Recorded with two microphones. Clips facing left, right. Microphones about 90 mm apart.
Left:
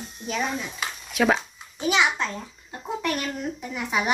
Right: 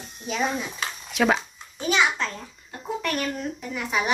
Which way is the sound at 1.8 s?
15° left (ahead or behind).